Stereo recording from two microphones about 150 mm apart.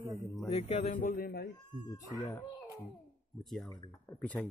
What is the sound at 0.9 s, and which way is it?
Speech, 65° left (ahead or behind).